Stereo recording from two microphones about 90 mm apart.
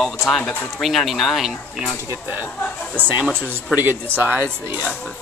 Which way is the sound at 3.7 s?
20° right (ahead or behind).